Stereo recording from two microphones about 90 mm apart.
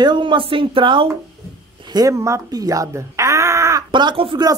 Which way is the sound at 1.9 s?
40° right (ahead or behind).